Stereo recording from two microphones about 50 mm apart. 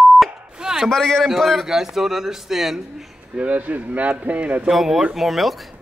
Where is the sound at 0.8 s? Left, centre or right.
Centre.